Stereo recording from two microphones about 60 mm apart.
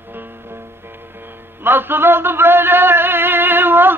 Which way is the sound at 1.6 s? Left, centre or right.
Right.